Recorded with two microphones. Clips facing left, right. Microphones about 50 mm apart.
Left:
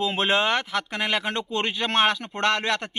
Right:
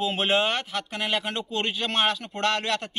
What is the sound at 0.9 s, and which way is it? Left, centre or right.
Speech, left.